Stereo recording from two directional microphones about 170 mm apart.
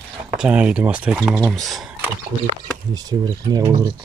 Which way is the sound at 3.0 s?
20° right (ahead or behind).